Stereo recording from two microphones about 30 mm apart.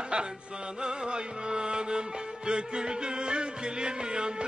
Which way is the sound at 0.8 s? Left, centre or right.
Right.